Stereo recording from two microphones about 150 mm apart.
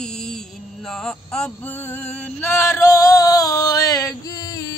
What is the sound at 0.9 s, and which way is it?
Music, 5° left (ahead or behind).